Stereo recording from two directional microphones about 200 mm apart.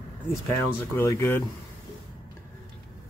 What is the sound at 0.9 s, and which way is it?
Speech, 15° left (ahead or behind).